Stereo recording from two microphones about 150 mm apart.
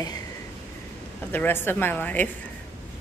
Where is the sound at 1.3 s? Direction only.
15° left (ahead or behind).